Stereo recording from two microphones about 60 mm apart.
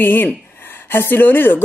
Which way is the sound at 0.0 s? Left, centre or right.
Left.